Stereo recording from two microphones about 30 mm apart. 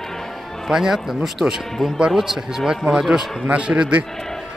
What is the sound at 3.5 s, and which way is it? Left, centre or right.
Speech, right.